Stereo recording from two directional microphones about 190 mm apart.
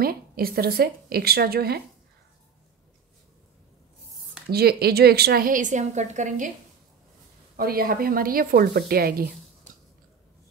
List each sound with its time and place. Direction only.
0.0 s a woman's voice: 50° right (ahead or behind)
4.5 s a woman's voice: 55° right (ahead or behind)
7.5 s a woman's voice: 50° right (ahead or behind)